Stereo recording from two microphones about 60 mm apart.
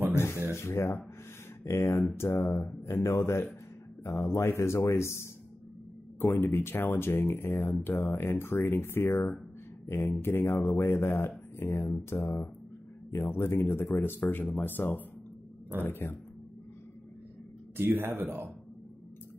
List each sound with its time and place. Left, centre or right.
0.1 s a sound: left
1.6 s speech: left
3.0 s speech: left
17.7 s speech: right